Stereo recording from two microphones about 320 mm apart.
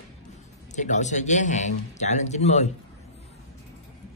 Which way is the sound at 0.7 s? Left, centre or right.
Left.